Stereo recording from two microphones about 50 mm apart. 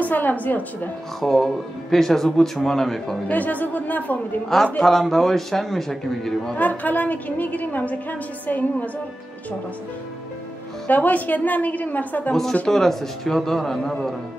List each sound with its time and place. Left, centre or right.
0.0 s a woman's voice: left
1.2 s speech: centre
3.3 s a woman's voice: left
4.8 s a man's voice: centre
6.5 s a woman's voice: left
10.9 s a woman's voice: left
12.6 s speech: centre